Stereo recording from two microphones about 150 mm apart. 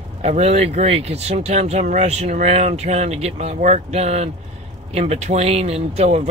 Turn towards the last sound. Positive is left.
turn(degrees=-45)  # may be behind; listen again after turning